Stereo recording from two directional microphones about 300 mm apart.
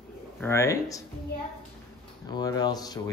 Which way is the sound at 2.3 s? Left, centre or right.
Centre.